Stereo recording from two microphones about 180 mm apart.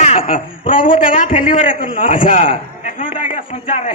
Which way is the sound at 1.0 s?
50° left (ahead or behind).